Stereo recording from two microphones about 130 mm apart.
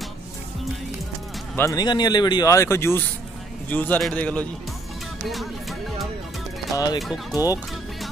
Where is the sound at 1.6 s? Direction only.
25° left (ahead or behind); by 4.4 s 10° left (ahead or behind).